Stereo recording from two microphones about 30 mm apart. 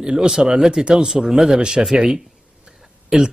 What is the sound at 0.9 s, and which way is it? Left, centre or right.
Speech, centre.